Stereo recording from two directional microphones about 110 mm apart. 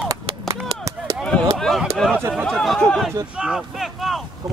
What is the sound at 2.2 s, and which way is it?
Speech, 20° right (ahead or behind).